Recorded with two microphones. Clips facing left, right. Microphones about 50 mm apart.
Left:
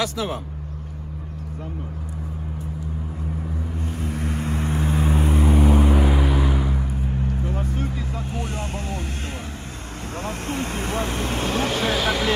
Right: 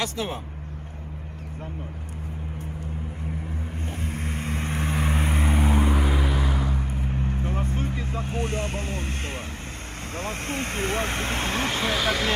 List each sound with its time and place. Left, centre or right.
0.0 s speech: right
3.8 s vehicle: right
6.0 s vehicle: centre
6.8 s vehicle: right
10.1 s vehicle: right
12.0 s speech: centre